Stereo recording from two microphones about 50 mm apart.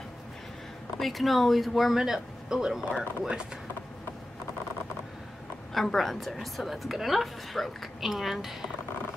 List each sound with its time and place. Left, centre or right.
0.9 s a woman's voice: centre
5.8 s a woman's voice: centre